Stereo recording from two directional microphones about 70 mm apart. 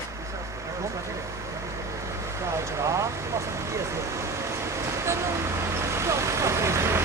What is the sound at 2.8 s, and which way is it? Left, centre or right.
Vehicle, right.